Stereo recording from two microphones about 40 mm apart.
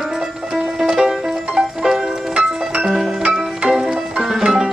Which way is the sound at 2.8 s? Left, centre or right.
Centre.